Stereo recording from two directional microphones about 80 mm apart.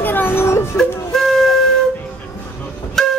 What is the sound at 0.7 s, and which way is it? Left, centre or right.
Wind instrument, centre.